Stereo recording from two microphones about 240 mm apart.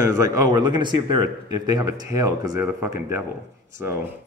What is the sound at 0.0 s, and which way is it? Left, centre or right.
Speech, centre.